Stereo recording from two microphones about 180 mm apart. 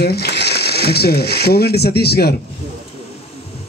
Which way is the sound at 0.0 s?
60° left (ahead or behind).